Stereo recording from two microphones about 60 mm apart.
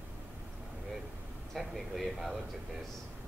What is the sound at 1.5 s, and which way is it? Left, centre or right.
Speech, centre.